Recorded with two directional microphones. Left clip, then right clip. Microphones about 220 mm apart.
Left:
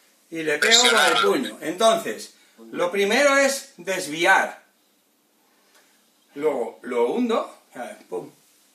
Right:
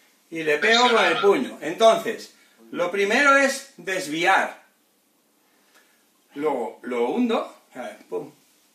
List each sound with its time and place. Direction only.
0.3 s speech: centre (ahead or behind)
0.6 s speech: 45° left (ahead or behind)
1.6 s speech: 10° left (ahead or behind)
2.1 s speech: centre (ahead or behind)
6.3 s speech: centre (ahead or behind)